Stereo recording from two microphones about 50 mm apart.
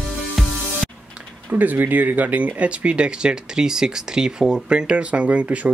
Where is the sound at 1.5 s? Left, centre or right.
Right.